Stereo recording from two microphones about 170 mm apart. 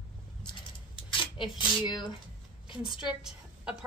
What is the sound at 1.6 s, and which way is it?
Speech, 30° left (ahead or behind).